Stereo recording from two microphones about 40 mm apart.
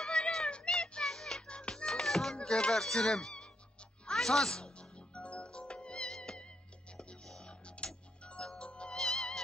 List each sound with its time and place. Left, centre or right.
0.0 s music: centre
1.5 s music: left
2.3 s speech: left
4.0 s music: centre
4.7 s music: left
8.9 s music: centre